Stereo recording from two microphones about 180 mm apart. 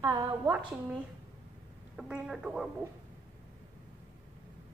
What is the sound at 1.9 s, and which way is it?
Speech, 5° right (ahead or behind).